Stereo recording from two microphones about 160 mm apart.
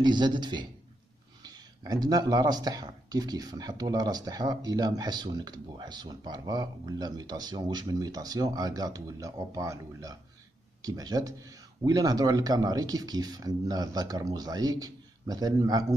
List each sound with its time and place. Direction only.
0.0 s speech: 25° right (ahead or behind)